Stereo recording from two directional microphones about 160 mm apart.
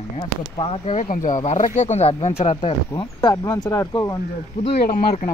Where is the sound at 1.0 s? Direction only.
55° left (ahead or behind); by 4.2 s 20° left (ahead or behind).